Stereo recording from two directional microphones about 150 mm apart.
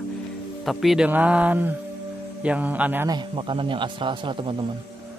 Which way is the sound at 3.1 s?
35° right (ahead or behind).